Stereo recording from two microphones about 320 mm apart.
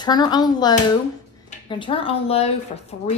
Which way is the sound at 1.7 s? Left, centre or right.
Centre.